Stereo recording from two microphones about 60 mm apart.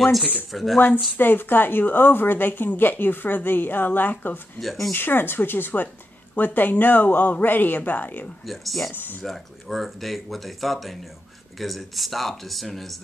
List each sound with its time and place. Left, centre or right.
0.5 s speech: centre
0.7 s speech: left
4.6 s speech: centre
4.9 s speech: left
8.5 s speech: centre